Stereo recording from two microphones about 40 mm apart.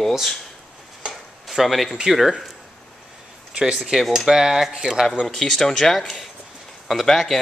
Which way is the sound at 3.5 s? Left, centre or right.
Right.